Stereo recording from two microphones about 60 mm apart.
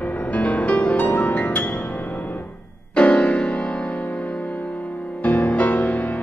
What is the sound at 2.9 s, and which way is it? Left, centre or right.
Music, centre.